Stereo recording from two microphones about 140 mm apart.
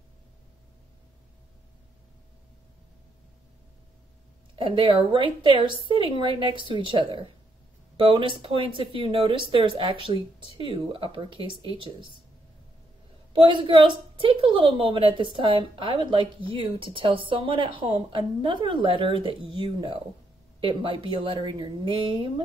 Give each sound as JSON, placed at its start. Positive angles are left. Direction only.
{"t": 4.6, "sound": "a woman's voice", "side_deg": -35}
{"t": 13.3, "sound": "a woman's voice", "side_deg": -40}